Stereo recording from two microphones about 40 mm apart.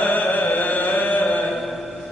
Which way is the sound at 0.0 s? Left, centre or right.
Left.